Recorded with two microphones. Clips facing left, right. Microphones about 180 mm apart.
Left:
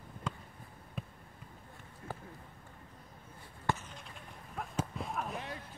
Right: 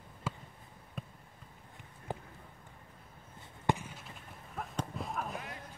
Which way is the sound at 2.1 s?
20° right (ahead or behind).